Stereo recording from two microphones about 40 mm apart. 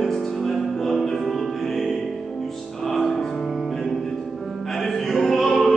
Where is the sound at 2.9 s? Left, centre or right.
Centre.